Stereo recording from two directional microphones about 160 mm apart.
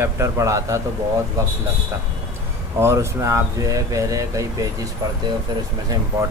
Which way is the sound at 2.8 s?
15° right (ahead or behind).